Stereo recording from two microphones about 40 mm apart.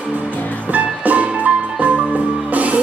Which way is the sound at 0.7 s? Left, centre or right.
Right.